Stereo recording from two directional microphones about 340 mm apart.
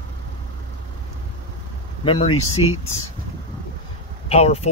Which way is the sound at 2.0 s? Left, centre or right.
Centre.